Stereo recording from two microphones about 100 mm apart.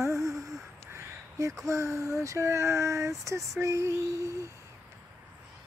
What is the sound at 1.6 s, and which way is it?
Speech, 30° right (ahead or behind).